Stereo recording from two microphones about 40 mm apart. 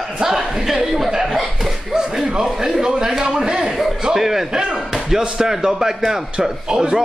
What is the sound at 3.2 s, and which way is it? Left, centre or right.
Speech, centre.